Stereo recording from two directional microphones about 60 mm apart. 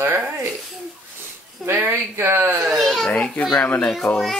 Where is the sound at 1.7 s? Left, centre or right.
Right.